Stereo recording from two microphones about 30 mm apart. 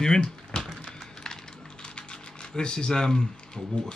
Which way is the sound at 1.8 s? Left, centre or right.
Left.